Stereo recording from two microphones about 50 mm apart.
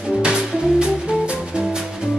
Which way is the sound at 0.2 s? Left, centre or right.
Right.